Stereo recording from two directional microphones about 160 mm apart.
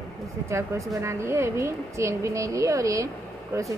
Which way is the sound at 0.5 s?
20° right (ahead or behind).